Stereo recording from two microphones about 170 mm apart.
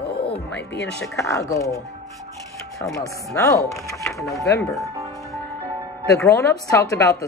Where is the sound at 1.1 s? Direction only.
15° left (ahead or behind).